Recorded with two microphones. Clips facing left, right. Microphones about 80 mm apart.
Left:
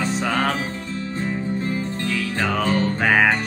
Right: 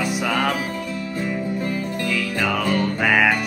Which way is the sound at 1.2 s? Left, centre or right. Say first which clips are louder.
Even; left.